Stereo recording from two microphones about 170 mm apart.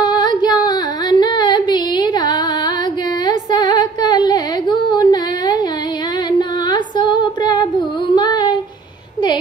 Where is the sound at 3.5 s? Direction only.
25° left (ahead or behind).